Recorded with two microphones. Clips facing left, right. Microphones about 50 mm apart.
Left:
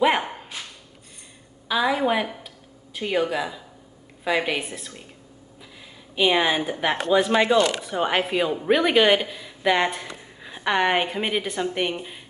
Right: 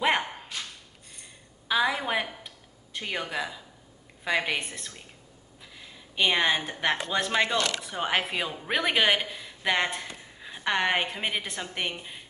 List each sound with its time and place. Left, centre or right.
0.0 s dog: centre
0.5 s a sound: centre
1.7 s speech: centre
2.4 s a sound: centre
4.2 s speech: centre
6.1 s speech: centre
7.8 s a woman's voice: centre